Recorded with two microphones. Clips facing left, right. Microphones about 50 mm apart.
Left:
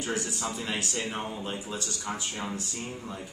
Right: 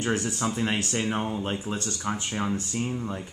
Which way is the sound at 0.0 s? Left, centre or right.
Right.